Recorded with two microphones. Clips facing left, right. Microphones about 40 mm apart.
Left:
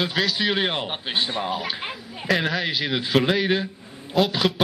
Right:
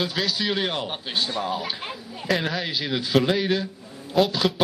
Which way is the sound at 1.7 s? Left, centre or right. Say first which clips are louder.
Left 2 dB; left.